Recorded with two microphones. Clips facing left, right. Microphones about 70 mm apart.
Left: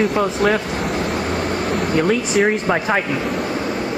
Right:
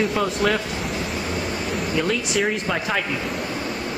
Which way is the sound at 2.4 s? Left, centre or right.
Left.